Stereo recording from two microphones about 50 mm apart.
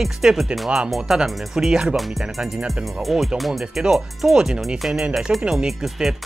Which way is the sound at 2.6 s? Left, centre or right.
Centre.